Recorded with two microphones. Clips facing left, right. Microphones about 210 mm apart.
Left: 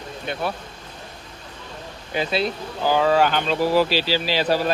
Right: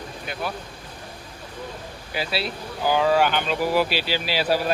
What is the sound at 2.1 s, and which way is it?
Speech, 5° right (ahead or behind).